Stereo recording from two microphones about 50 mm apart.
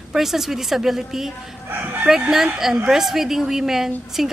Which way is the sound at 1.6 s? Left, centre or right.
Right.